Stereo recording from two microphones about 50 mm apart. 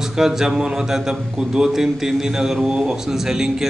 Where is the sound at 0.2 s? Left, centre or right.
Centre.